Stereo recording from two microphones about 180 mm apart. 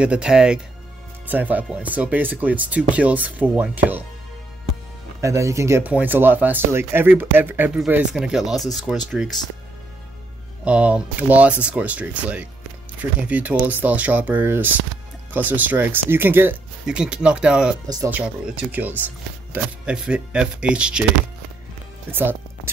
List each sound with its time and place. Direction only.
0.0 s speech: 5° right (ahead or behind)
5.2 s speech: 15° right (ahead or behind)
10.6 s speech: 5° right (ahead or behind)
17.8 s speech: 20° right (ahead or behind)
18.1 s speech: 5° right (ahead or behind)
22.1 s speech: 10° right (ahead or behind)